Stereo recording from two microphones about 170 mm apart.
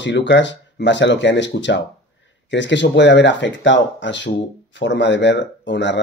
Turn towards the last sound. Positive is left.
turn(degrees=90)